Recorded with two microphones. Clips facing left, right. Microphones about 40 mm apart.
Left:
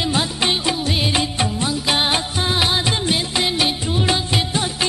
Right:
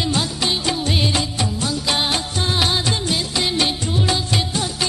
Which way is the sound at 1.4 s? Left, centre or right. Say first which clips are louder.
Left 2 dB; left.